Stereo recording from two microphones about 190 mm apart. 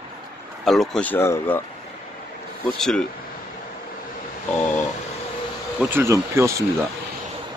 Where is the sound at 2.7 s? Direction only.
Centre (ahead or behind).